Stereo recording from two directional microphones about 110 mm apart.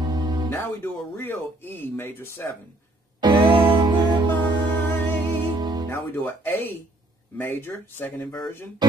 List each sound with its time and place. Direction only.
0.0 s music: 40° right (ahead or behind)
0.5 s speech: 20° left (ahead or behind)
3.2 s music: 45° right (ahead or behind)
5.6 s music: 40° right (ahead or behind)
5.9 s speech: 20° left (ahead or behind)